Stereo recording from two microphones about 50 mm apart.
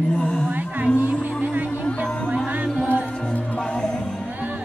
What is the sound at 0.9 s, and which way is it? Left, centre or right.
Music, right.